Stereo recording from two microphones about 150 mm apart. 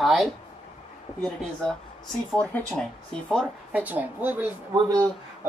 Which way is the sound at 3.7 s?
10° right (ahead or behind).